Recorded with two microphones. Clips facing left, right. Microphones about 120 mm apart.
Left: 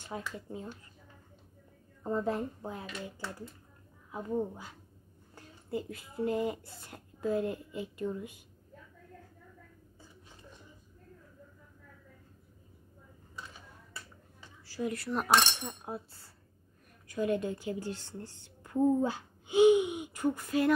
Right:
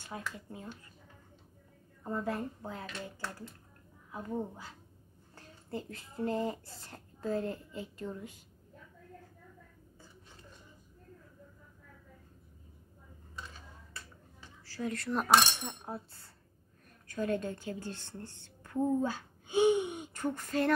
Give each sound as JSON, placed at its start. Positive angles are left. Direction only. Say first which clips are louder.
{"t": 0.1, "sound": "speech", "louder": "left 3 dB", "side_deg": 25}
{"t": 2.0, "sound": "speech", "louder": "left 3 dB", "side_deg": 20}
{"t": 4.3, "sound": "a woman's voice", "louder": "left 4 dB", "side_deg": 15}
{"t": 14.7, "sound": "a woman's voice", "louder": "left 1 dB", "side_deg": 10}